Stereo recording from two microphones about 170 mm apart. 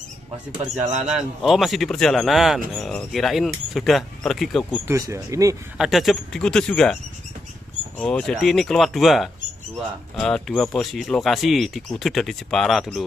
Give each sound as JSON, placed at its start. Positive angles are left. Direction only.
{"t": 0.7, "sound": "speech", "side_deg": -10}
{"t": 4.8, "sound": "speech", "side_deg": -15}
{"t": 5.8, "sound": "speech", "side_deg": 0}
{"t": 8.0, "sound": "speech", "side_deg": 5}